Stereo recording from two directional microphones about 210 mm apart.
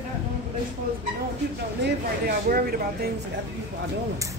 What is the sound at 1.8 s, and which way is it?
Speech, 45° right (ahead or behind).